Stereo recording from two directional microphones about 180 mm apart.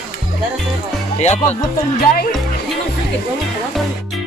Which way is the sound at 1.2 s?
40° left (ahead or behind).